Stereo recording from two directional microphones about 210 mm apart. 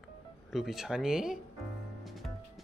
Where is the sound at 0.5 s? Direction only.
Centre (ahead or behind).